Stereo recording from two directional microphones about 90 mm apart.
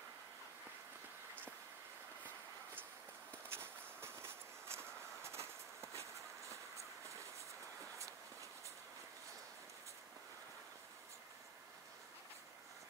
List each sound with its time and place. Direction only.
3.4 s vehicle: 30° right (ahead or behind)